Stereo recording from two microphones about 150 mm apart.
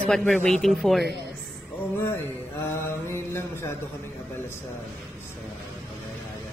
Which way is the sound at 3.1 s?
15° left (ahead or behind).